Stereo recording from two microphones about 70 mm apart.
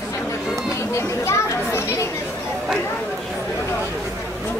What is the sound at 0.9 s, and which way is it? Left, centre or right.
Children playing, left.